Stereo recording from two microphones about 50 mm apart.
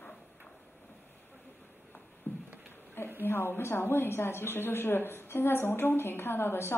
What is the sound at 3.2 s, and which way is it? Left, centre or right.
A woman's voice, left.